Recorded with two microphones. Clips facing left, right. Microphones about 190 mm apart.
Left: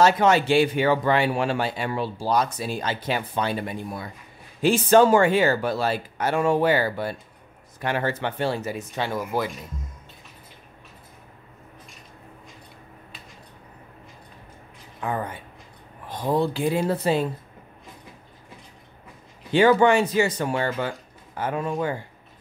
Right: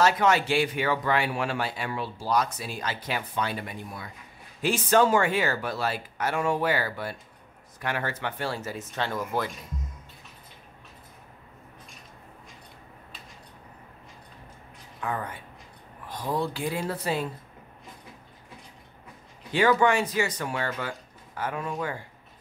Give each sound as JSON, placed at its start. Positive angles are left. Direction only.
{"t": 0.0, "sound": "speech", "side_deg": 25}
{"t": 15.0, "sound": "speech", "side_deg": 25}
{"t": 19.5, "sound": "speech", "side_deg": 30}